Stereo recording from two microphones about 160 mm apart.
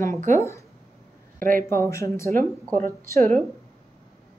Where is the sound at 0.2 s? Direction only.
50° right (ahead or behind).